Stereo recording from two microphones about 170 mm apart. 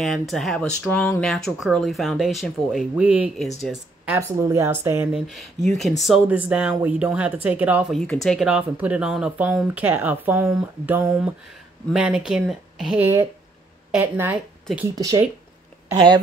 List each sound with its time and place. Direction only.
0.0 s speech: centre (ahead or behind)
5.2 s speech: centre (ahead or behind)
7.9 s speech: 5° left (ahead or behind)
13.0 s speech: 15° right (ahead or behind)